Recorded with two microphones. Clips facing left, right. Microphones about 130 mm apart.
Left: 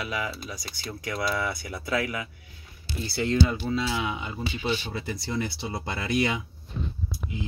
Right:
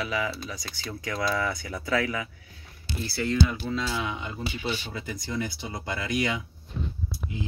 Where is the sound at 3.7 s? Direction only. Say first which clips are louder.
Left 2 dB; 5° left (ahead or behind).